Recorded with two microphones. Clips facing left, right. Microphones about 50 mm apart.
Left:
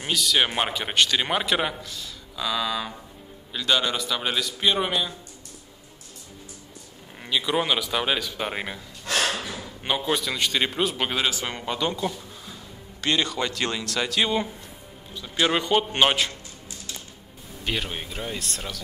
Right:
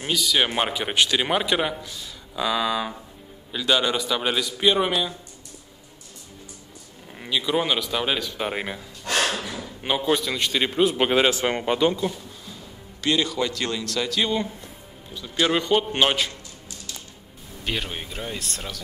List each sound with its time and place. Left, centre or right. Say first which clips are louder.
0.0 s a man's voice: even; centre
1.9 s a man's voice: even; centre
7.2 s a man's voice: right 1 dB; centre
9.8 s a man's voice: right 2 dB; centre
11.4 s speech: right 6 dB; right
13.0 s a man's voice: right 2 dB; centre
17.6 s a man's voice: even; centre